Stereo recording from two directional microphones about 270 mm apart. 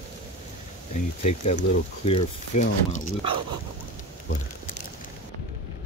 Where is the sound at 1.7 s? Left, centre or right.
Left.